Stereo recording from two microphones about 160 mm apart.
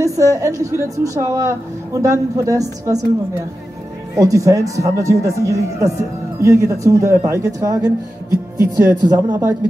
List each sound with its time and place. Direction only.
0.2 s a woman's voice: 20° right (ahead or behind)
4.1 s a woman's voice: 20° right (ahead or behind)